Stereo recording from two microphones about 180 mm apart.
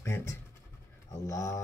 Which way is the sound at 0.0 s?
15° left (ahead or behind).